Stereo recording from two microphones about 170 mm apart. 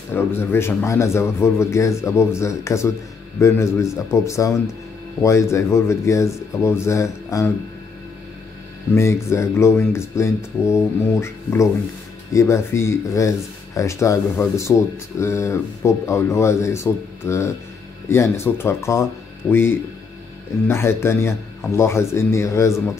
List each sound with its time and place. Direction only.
0.1 s speech: 15° left (ahead or behind)
8.9 s speech: 15° left (ahead or behind)
20.6 s speech: 15° left (ahead or behind)